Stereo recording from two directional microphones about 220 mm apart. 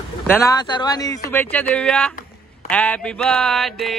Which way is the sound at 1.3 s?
10° left (ahead or behind).